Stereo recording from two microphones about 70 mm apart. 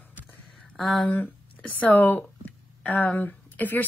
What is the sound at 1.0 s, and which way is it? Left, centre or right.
A woman's voice, left.